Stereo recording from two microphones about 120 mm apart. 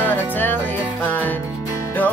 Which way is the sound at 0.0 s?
15° left (ahead or behind).